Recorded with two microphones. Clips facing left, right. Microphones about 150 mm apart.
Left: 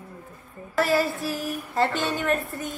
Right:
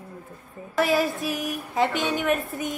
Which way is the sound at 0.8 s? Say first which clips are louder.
Even; 20° right (ahead or behind).